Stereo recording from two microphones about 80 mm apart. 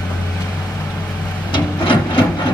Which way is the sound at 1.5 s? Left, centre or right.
Left.